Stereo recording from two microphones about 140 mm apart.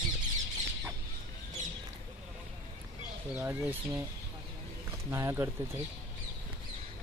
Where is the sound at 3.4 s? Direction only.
15° right (ahead or behind).